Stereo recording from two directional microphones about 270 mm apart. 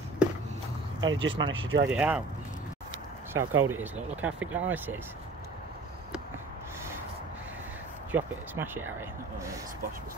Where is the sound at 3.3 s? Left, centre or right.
Centre.